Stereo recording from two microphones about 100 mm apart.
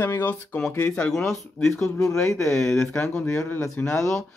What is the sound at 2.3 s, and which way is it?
Speech, 30° left (ahead or behind).